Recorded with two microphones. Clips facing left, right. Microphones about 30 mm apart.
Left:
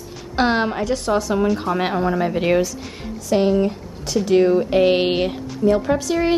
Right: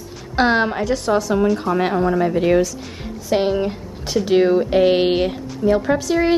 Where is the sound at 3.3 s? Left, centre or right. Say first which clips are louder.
Left 1 dB; centre.